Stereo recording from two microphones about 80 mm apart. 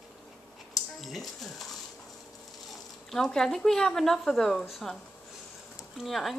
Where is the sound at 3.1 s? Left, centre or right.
Centre.